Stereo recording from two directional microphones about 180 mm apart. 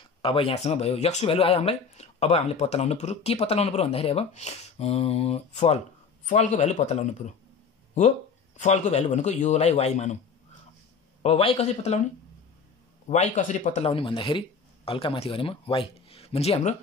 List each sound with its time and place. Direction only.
0.2 s speech: 30° left (ahead or behind)
8.5 s speech: 40° left (ahead or behind)
11.2 s speech: 35° left (ahead or behind)
13.1 s speech: 40° left (ahead or behind)